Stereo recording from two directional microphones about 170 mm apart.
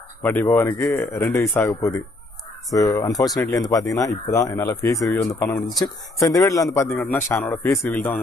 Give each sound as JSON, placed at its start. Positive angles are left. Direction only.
{"t": 0.2, "sound": "speech", "side_deg": 10}